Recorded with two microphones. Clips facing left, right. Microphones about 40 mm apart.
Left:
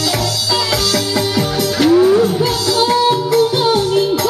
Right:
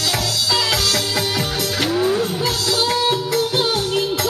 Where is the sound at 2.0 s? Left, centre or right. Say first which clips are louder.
Left 7 dB; centre.